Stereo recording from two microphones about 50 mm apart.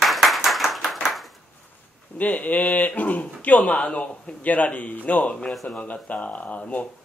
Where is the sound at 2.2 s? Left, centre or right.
Left.